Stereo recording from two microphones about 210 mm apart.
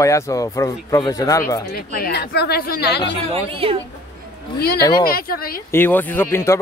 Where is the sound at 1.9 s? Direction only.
50° left (ahead or behind).